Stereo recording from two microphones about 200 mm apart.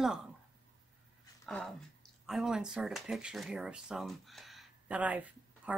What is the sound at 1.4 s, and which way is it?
Speech, centre (ahead or behind).